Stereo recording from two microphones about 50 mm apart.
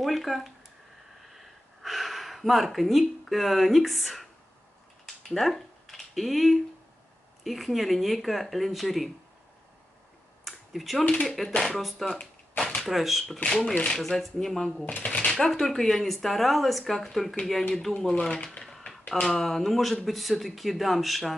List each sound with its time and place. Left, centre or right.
0.0 s speech: centre
1.3 s gasp: centre
5.0 s a sound: centre
7.4 s speech: centre
10.4 s a sound: centre
11.2 s speech: centre
13.5 s speech: centre
18.3 s speech: left
18.6 s a sound: centre
19.4 s speech: centre